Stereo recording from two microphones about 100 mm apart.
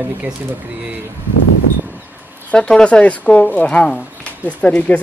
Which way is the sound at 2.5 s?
5° left (ahead or behind).